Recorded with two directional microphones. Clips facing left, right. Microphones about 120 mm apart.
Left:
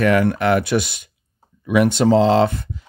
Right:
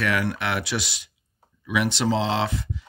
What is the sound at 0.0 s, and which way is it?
Speech, 45° left (ahead or behind).